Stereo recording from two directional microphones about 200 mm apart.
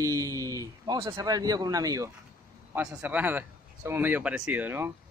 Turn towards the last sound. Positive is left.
turn(degrees=-10)  # may be behind; listen again after turning